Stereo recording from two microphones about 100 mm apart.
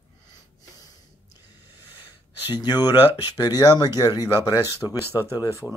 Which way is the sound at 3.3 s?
40° left (ahead or behind).